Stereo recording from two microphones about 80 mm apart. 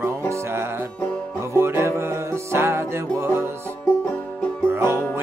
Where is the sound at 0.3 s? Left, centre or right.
Right.